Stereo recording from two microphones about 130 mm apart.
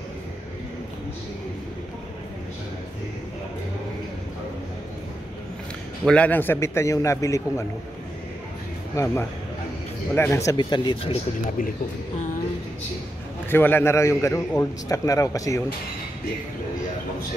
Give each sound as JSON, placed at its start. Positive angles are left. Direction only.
{"t": 6.0, "sound": "a man's voice", "side_deg": 10}
{"t": 8.9, "sound": "a man's voice", "side_deg": 25}
{"t": 10.6, "sound": "speech", "side_deg": 40}
{"t": 13.5, "sound": "a man's voice", "side_deg": 15}